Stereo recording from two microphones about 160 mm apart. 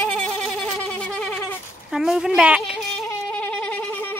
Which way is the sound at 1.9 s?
5° right (ahead or behind).